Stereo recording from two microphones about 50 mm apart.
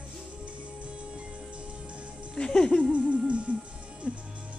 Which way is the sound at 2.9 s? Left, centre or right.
Right.